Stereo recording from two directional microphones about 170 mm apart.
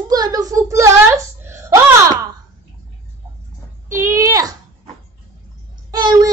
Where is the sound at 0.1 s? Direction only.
20° right (ahead or behind).